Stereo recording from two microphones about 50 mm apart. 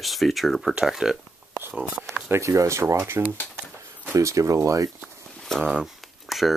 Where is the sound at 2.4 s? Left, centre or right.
Right.